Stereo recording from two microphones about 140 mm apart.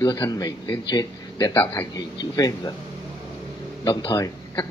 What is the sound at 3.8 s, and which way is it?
Speech, 30° left (ahead or behind).